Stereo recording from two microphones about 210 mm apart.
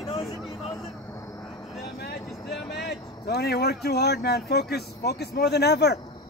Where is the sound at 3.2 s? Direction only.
50° left (ahead or behind).